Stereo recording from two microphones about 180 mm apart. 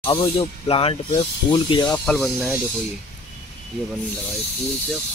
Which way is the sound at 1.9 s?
5° left (ahead or behind).